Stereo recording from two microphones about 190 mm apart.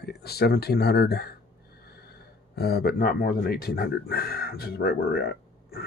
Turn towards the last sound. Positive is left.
turn(degrees=55)  # may be behind; listen again after turning